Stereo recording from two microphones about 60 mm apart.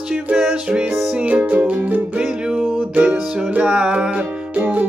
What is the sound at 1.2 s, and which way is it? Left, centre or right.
Music, right.